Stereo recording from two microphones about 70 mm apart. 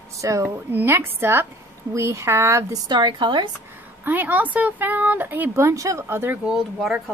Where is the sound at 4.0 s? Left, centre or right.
Right.